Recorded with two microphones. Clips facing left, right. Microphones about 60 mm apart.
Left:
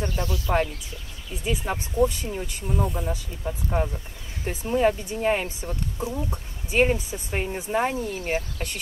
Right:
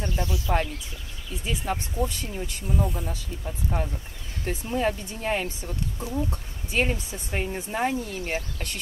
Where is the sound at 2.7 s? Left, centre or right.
Centre.